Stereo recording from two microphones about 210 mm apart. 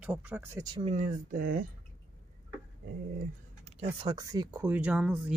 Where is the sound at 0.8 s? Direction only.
40° right (ahead or behind).